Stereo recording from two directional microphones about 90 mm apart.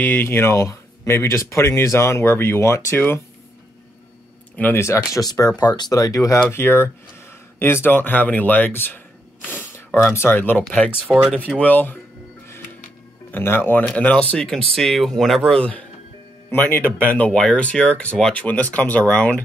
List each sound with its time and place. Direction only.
0.0 s speech: 20° left (ahead or behind)
4.7 s speech: 30° left (ahead or behind)
5.6 s speech: 50° left (ahead or behind)
6.5 s speech: 25° left (ahead or behind)
9.5 s a sound: 25° left (ahead or behind)
10.1 s speech: 25° left (ahead or behind)
11.1 s speech: 5° right (ahead or behind)
11.5 s speech: 15° left (ahead or behind)
13.3 s speech: 25° left (ahead or behind)
16.4 s speech: 20° left (ahead or behind)